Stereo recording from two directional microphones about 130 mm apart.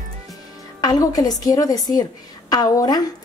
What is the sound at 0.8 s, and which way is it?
A woman's voice, 30° left (ahead or behind).